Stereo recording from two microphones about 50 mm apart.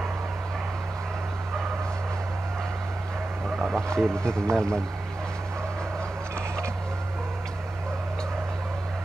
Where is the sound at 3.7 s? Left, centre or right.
Centre.